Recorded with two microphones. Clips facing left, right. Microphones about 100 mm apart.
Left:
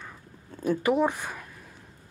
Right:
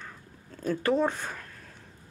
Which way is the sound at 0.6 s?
15° left (ahead or behind).